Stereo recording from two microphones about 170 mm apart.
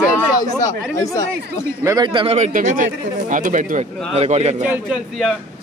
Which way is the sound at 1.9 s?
25° right (ahead or behind).